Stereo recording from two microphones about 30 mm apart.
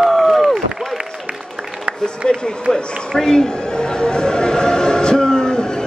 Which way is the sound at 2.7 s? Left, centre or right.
Left.